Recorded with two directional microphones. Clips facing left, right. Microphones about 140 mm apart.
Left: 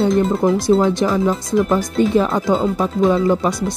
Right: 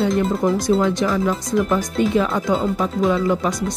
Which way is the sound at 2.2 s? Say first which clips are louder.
Left 3 dB; 30° left (ahead or behind).